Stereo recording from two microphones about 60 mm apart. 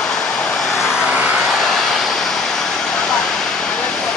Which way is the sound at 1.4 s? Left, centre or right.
Centre.